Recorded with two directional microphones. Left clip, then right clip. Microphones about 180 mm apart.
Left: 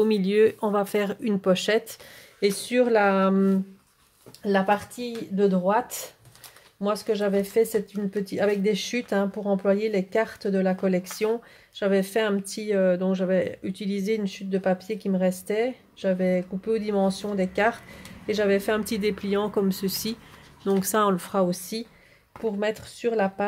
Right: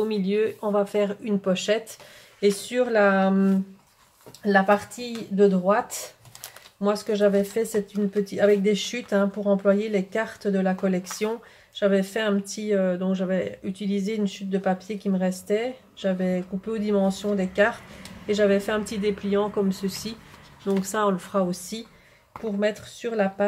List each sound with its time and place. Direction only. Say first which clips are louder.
0.0 s speech: left 4 dB; 55° left (ahead or behind)